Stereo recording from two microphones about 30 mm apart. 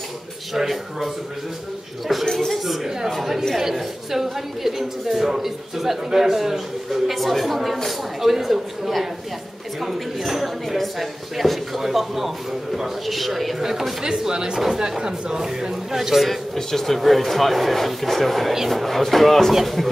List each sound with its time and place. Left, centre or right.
0.6 s a woman's voice: centre
13.6 s a woman's voice: centre
14.0 s speech: right
16.0 s a woman's voice: centre
16.5 s speech: centre